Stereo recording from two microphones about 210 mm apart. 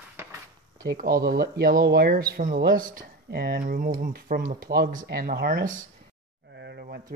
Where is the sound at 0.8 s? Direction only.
45° right (ahead or behind).